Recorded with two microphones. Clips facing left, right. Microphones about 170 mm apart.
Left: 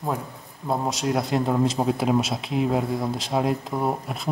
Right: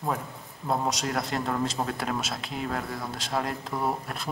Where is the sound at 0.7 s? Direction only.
Centre (ahead or behind).